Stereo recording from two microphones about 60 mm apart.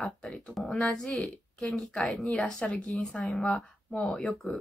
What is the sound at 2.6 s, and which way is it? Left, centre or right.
Speech, centre.